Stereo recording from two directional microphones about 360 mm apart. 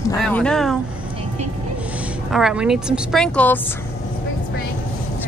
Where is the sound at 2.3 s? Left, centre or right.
Centre.